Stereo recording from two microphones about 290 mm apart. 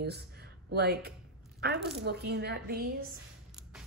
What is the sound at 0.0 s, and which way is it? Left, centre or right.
A woman's voice, right.